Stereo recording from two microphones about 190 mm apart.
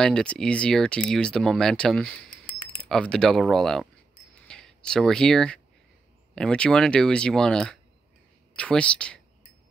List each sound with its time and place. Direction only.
0.0 s speech: 5° left (ahead or behind)